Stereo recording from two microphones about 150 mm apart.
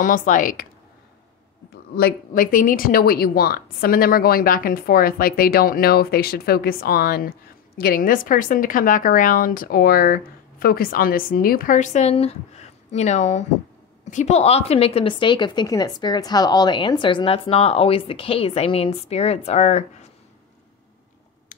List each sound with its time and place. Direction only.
0.0 s speech: 60° left (ahead or behind)
2.0 s a woman's voice: 75° left (ahead or behind); by 20.1 s 50° left (ahead or behind)